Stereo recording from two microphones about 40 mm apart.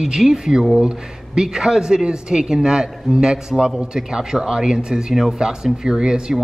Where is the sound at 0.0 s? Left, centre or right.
Centre.